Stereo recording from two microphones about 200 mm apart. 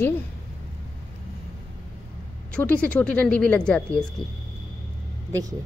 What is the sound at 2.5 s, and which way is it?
A woman's voice, 5° left (ahead or behind).